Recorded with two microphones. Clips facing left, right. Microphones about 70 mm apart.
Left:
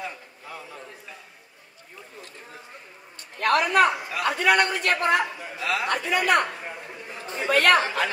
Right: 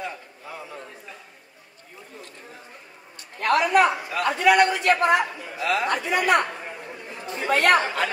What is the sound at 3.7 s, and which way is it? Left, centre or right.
A man's voice, centre.